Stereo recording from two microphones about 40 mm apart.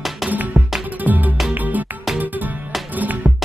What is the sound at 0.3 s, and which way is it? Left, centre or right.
Music, right.